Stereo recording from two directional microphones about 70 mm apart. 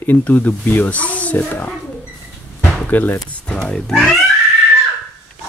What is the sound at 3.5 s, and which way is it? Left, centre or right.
Speech, centre.